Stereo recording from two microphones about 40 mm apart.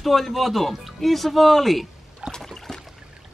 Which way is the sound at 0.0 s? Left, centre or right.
Centre.